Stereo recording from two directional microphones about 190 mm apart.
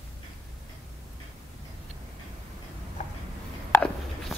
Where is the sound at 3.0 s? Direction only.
40° left (ahead or behind).